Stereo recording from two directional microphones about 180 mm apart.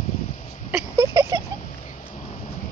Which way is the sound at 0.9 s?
20° right (ahead or behind).